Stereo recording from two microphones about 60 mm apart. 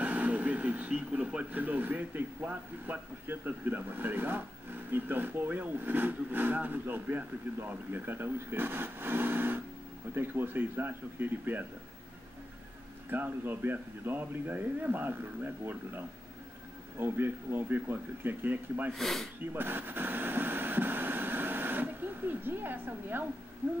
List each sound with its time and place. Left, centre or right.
0.0 s speech: right
13.1 s speech: right
17.0 s speech: right
18.9 s speech: centre
19.5 s speech: right